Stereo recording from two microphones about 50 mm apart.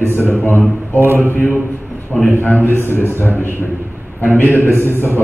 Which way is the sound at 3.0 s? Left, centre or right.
Left.